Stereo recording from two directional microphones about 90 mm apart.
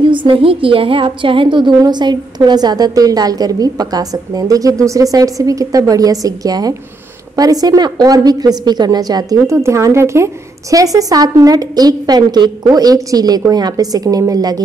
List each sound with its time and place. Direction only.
0.0 s a woman's voice: 70° right (ahead or behind); by 14.6 s 45° right (ahead or behind)